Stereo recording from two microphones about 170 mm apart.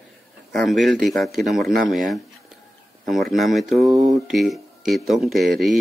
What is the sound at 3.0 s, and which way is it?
Speech, centre (ahead or behind).